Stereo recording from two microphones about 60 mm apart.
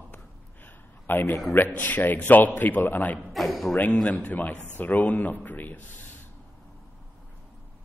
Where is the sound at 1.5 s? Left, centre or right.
Left.